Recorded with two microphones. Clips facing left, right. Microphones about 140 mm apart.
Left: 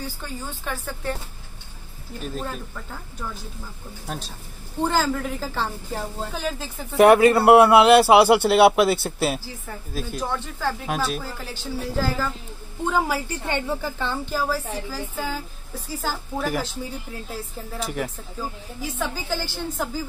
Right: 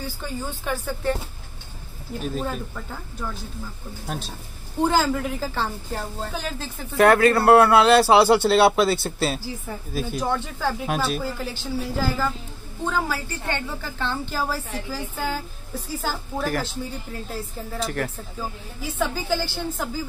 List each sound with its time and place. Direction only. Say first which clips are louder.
0.0 s speech: right 2 dB; 5° right (ahead or behind)
4.7 s speech: right 2 dB; 5° right (ahead or behind)
7.0 s speech: left 2 dB; 15° left (ahead or behind)
9.7 s speech: right 2 dB; 5° right (ahead or behind)
12.8 s speech: left 2 dB; 15° left (ahead or behind)
13.9 s speech: left 1 dB; 5° left (ahead or behind)